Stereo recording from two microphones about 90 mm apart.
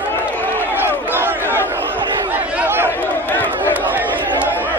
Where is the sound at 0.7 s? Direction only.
25° right (ahead or behind).